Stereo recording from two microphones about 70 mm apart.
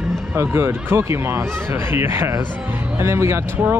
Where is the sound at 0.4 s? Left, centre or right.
Right.